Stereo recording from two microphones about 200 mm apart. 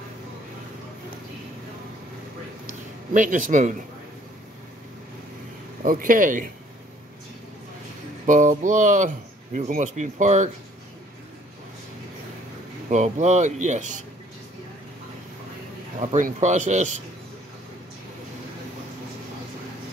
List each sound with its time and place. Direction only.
3.1 s speech: 40° right (ahead or behind)
5.9 s speech: 40° right (ahead or behind)
8.3 s speech: 40° right (ahead or behind)
12.9 s speech: 35° right (ahead or behind)
16.0 s speech: 40° right (ahead or behind)